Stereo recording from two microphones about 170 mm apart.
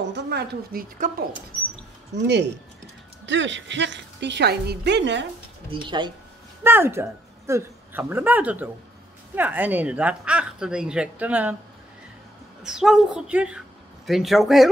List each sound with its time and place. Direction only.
0.1 s a woman's voice: 70° right (ahead or behind)
2.1 s a woman's voice: 90° right
5.7 s speech: 30° right (ahead or behind)
6.6 s a woman's voice: 15° right (ahead or behind)
12.6 s a woman's voice: 5° right (ahead or behind)